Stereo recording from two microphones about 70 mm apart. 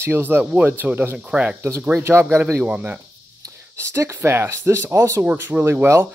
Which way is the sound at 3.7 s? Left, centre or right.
Right.